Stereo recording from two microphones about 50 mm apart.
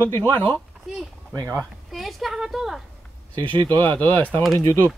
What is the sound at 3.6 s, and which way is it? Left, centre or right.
Speech, left.